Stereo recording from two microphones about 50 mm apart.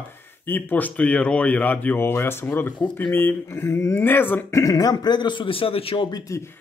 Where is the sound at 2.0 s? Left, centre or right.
Left.